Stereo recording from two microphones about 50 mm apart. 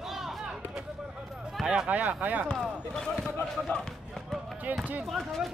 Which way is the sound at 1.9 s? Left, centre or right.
Right.